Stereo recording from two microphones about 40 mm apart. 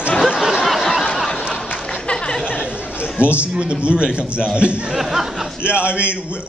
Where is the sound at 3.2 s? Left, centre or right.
Right.